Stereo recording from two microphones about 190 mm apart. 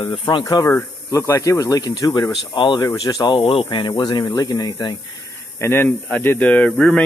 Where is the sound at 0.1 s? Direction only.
25° left (ahead or behind).